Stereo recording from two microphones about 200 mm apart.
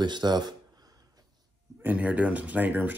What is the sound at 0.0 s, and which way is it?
Speech, 20° right (ahead or behind).